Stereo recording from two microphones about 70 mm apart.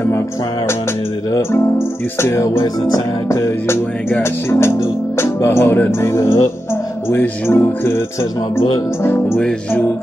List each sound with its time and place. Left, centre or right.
1.5 s speech: left